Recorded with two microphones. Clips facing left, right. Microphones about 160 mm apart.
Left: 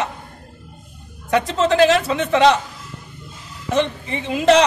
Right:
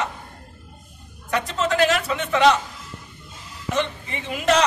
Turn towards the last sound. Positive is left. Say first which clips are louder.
# left 6 dB
turn(degrees=30)  # may be behind; listen again after turning